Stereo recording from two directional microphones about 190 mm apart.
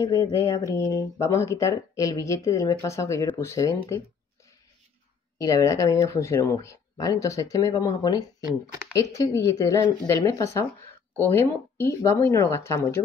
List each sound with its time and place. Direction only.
0.0 s speech: 15° left (ahead or behind)
5.4 s speech: 15° left (ahead or behind)